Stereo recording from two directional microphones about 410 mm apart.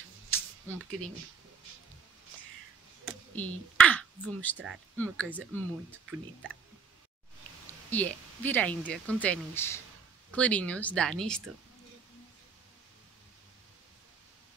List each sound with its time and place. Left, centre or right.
0.3 s a sound: centre
3.1 s speech: centre
7.9 s speech: centre